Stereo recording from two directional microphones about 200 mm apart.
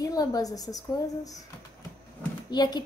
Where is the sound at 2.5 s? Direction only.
20° left (ahead or behind).